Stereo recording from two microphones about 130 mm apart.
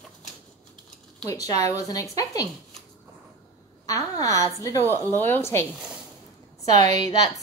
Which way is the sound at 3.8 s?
25° left (ahead or behind).